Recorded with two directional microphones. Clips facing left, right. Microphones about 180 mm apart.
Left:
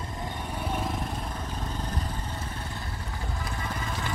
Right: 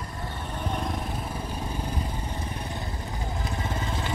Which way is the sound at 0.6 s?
5° left (ahead or behind).